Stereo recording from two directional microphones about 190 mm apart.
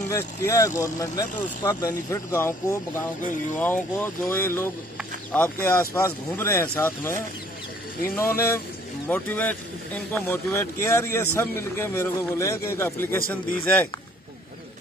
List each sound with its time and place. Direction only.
0.1 s speech: 15° left (ahead or behind)
8.2 s speech: 15° left (ahead or behind)